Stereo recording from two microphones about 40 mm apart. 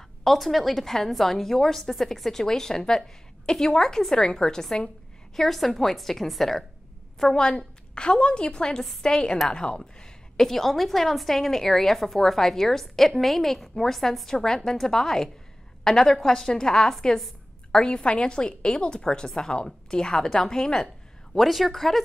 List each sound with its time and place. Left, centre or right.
0.2 s a woman's voice: centre
7.2 s a woman's voice: centre
10.3 s a woman's voice: centre
21.4 s speech: centre